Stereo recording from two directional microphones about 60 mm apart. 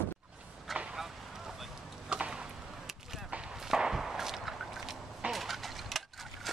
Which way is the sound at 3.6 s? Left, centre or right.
Centre.